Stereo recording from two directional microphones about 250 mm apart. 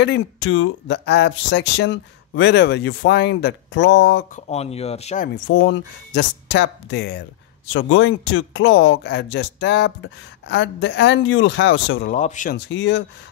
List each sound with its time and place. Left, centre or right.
0.0 s speech: left
4.5 s speech: left
5.3 s speech: left
12.1 s speech: left
12.5 s speech: left